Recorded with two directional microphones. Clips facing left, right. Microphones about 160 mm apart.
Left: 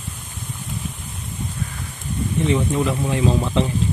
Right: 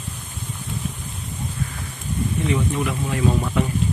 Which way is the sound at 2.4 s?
30° left (ahead or behind).